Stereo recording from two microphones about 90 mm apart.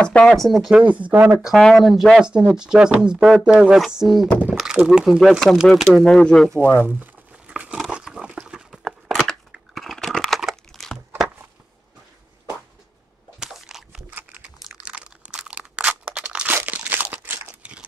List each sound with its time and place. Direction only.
0.0 s speech: 10° left (ahead or behind)
0.8 s speech: 15° right (ahead or behind)
5.7 s speech: 5° left (ahead or behind)
6.6 s speech: 20° left (ahead or behind)
7.4 s a sound: 10° right (ahead or behind); by 11.2 s 5° left (ahead or behind)
13.4 s a sound: 5° right (ahead or behind)
14.1 s typing: 15° right (ahead or behind)
14.6 s crunch: 10° right (ahead or behind)